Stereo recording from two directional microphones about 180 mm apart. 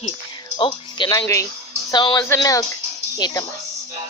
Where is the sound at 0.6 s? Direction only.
25° left (ahead or behind).